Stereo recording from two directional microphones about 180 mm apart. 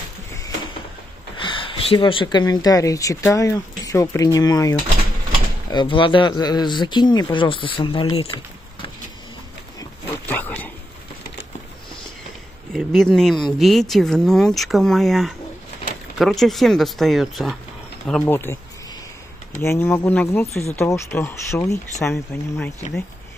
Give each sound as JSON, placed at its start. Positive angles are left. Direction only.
{"t": 1.3, "sound": "speech", "side_deg": 25}
{"t": 9.8, "sound": "dog", "side_deg": 10}
{"t": 12.7, "sound": "speech", "side_deg": 5}
{"t": 18.2, "sound": "speech", "side_deg": 15}
{"t": 19.6, "sound": "speech", "side_deg": 15}